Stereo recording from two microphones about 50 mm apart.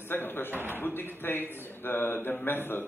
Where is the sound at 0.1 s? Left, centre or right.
Left.